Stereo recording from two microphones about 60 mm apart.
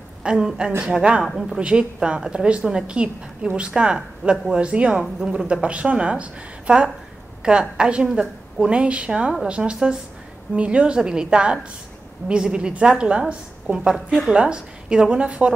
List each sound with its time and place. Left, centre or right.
0.2 s a woman's voice: centre
1.2 s a woman's voice: centre
1.6 s a woman's voice: centre
13.9 s a woman's voice: centre
14.3 s a woman's voice: centre